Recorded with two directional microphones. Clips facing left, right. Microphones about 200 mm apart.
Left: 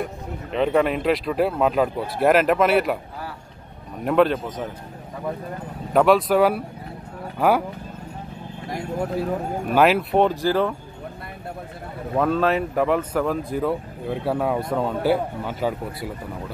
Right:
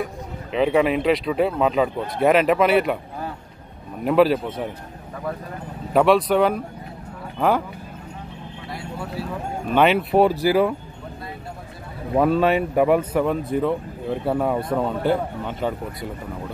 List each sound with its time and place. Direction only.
0.5 s speech: 5° right (ahead or behind)
4.0 s speech: 5° right (ahead or behind)
5.9 s speech: centre (ahead or behind)
8.6 s speech: 45° left (ahead or behind)
9.7 s speech: 5° left (ahead or behind)
12.2 s speech: 5° right (ahead or behind)